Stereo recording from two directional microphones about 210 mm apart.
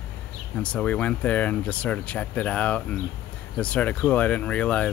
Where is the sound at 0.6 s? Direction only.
5° left (ahead or behind).